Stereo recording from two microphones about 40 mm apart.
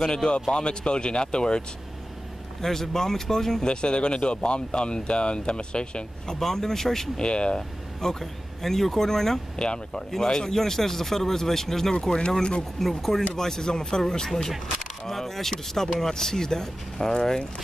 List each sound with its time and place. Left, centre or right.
0.0 s speech: left
2.6 s speech: centre
3.6 s speech: left
6.4 s speech: centre
7.2 s speech: left
8.0 s speech: centre
9.6 s speech: left
12.8 s speech: centre
13.3 s speech: centre